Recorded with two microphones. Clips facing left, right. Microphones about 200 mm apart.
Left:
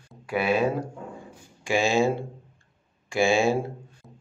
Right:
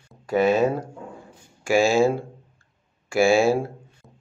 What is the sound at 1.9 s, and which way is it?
Speech, 20° left (ahead or behind).